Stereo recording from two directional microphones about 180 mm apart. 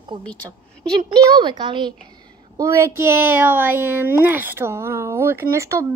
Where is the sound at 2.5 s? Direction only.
15° right (ahead or behind).